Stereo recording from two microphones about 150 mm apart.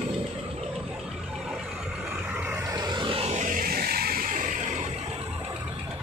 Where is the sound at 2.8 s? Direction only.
35° right (ahead or behind).